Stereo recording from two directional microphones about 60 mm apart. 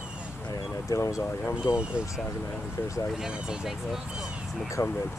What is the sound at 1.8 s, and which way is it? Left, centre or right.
Speech, centre.